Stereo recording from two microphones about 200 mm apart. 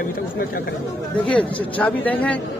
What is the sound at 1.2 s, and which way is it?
Speech, 5° left (ahead or behind).